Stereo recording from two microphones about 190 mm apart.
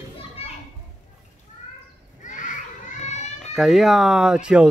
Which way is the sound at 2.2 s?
40° left (ahead or behind).